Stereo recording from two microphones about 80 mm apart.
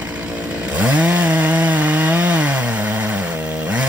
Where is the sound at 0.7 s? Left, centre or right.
Centre.